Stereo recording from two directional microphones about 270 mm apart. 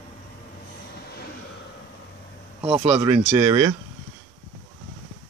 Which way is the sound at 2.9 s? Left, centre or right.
Centre.